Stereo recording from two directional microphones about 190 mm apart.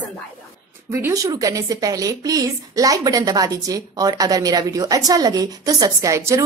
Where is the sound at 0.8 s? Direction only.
15° right (ahead or behind).